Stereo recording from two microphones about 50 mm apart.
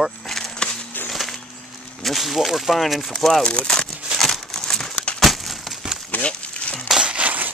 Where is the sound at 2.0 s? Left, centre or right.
Centre.